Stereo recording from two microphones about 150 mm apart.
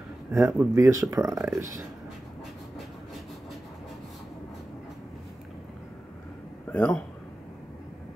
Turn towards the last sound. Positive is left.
turn(degrees=5)  # may be behind; listen again after turning